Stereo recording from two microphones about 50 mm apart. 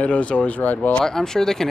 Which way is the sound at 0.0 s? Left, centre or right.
Left.